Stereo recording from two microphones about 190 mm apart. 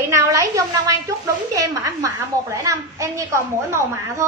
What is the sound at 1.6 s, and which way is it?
A woman's voice, 15° right (ahead or behind).